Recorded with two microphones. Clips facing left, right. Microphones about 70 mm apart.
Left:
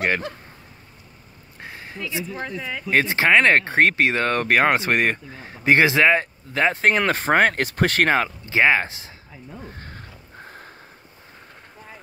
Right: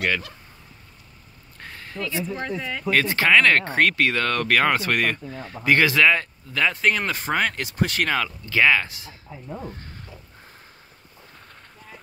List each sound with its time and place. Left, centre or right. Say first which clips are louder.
0.0 s speech: left 2 dB; left
1.6 s a sound: right 1 dB; centre
2.3 s speech: right 1 dB; centre
2.9 s speech: left 1 dB; left
7.1 s speech: left 6 dB; left
8.5 s speech: even; left
9.8 s a sound: left 3 dB; left